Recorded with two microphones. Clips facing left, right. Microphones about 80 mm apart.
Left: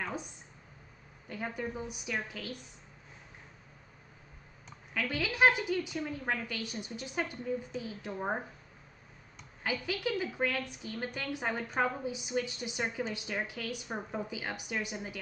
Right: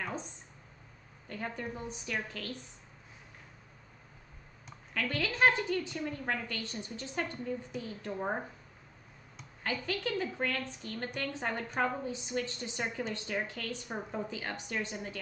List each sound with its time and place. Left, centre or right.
1.3 s a woman's voice: centre
4.9 s a woman's voice: centre
9.6 s a woman's voice: centre